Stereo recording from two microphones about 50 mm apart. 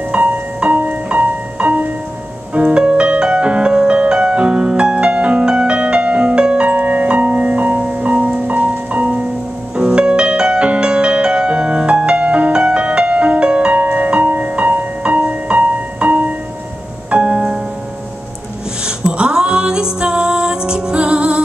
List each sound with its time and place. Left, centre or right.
0.1 s music: right
18.9 s music: centre